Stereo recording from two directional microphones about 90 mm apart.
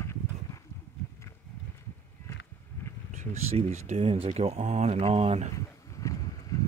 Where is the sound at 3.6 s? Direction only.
90° right.